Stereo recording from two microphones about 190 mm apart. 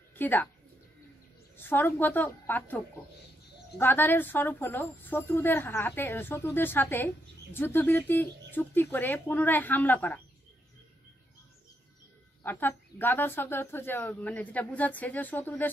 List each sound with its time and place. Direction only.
0.1 s a woman's voice: 10° left (ahead or behind)
1.6 s a woman's voice: 10° left (ahead or behind)
3.8 s a woman's voice: 10° left (ahead or behind)
12.4 s a woman's voice: 10° left (ahead or behind)